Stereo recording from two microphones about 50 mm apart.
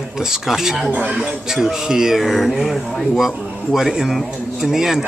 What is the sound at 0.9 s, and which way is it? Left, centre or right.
Speech, right.